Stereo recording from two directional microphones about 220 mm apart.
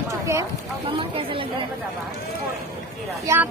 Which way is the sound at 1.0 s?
25° right (ahead or behind).